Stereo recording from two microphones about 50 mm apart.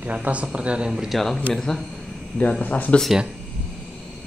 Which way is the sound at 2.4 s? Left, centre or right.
Left.